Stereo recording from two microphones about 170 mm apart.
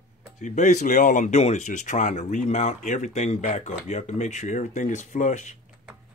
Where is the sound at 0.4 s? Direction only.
45° left (ahead or behind).